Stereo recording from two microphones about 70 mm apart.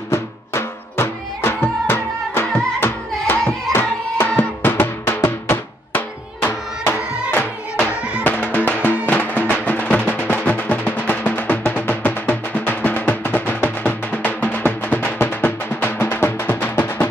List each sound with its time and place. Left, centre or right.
0.1 s music: left
4.4 s music: left